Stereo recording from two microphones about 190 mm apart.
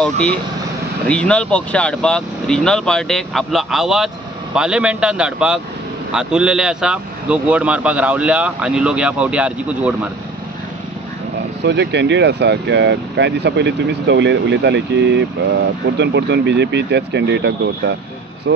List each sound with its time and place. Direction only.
0.0 s speech: 5° left (ahead or behind)
11.6 s speech: 65° right (ahead or behind)